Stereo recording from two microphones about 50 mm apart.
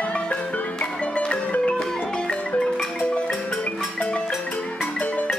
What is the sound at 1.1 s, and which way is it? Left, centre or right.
Music, left.